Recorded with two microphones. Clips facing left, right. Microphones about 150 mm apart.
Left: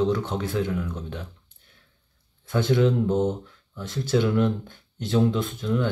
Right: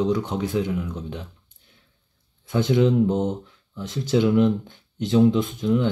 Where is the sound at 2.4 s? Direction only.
15° right (ahead or behind).